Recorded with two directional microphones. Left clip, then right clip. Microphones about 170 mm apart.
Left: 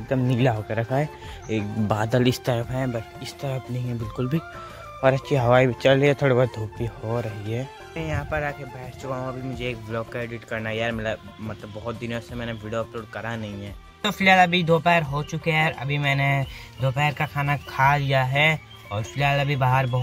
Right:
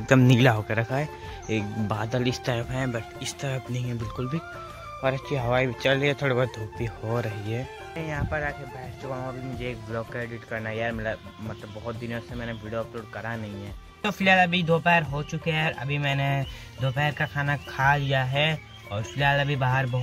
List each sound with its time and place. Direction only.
0.7 s speech: centre (ahead or behind)
1.9 s speech: 20° left (ahead or behind)
2.6 s speech: centre (ahead or behind)
4.2 s speech: 20° left (ahead or behind)
6.8 s speech: 5° right (ahead or behind)
7.9 s speech: 20° left (ahead or behind)